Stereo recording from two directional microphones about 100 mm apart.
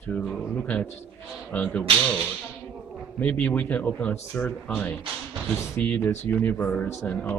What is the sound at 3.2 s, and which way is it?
A man's voice, 15° left (ahead or behind).